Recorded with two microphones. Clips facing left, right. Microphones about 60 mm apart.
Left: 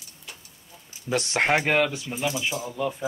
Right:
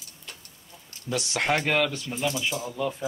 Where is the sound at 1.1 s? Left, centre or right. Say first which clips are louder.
Left 3 dB; left.